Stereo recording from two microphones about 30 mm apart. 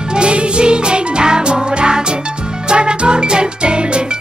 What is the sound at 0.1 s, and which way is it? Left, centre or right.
Music, right.